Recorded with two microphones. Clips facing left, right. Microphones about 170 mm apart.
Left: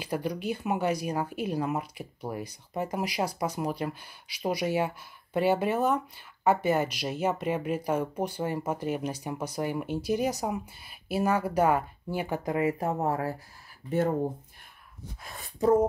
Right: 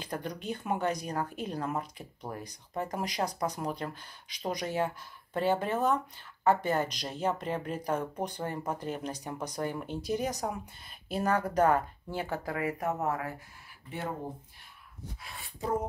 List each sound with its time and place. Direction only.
0.0 s speech: 10° left (ahead or behind); by 13.4 s 35° left (ahead or behind)
13.8 s speech: 45° left (ahead or behind)
15.2 s speech: 45° left (ahead or behind)